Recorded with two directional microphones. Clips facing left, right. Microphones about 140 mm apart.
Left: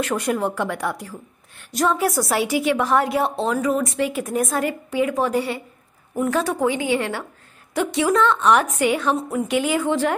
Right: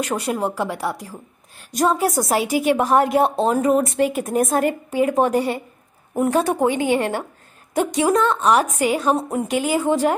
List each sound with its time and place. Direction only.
0.3 s speech: 20° right (ahead or behind)
1.7 s a woman's voice: 40° right (ahead or behind)
6.1 s a woman's voice: 35° right (ahead or behind)
6.4 s a woman's voice: 50° right (ahead or behind)